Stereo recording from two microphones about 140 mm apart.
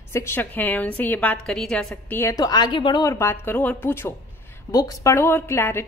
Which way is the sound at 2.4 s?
30° left (ahead or behind).